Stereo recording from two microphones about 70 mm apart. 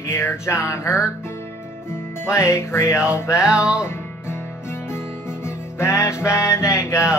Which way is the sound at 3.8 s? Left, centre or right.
Left.